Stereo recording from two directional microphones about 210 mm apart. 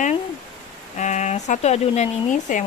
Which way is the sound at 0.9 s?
35° left (ahead or behind).